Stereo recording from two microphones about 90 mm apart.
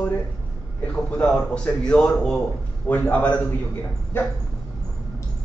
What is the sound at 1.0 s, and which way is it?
A man's voice, 10° left (ahead or behind).